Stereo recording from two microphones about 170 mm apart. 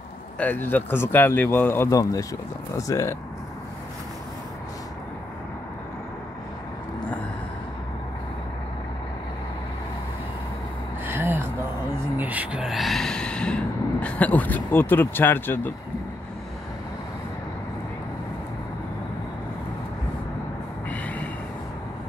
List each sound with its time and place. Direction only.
0.4 s speech: 10° left (ahead or behind)
11.1 s gasp: 15° right (ahead or behind)
12.2 s a sound: 10° right (ahead or behind); by 15.7 s 10° left (ahead or behind)
20.9 s train: 10° left (ahead or behind)